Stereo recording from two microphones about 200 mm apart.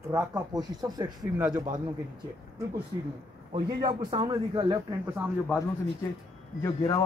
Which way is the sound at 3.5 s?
25° right (ahead or behind).